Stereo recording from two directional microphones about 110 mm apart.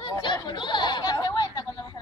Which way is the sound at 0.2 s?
40° left (ahead or behind).